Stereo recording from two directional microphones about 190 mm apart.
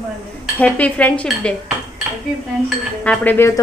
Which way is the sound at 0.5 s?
5° left (ahead or behind).